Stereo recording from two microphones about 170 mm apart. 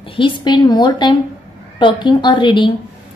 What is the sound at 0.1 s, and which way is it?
A woman's voice, 30° left (ahead or behind).